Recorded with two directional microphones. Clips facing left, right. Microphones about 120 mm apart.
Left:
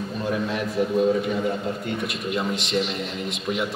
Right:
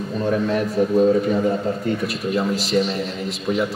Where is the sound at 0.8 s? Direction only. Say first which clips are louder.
Right 3 dB; 35° right (ahead or behind).